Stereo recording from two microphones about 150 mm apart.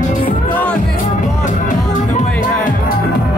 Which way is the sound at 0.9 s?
60° left (ahead or behind).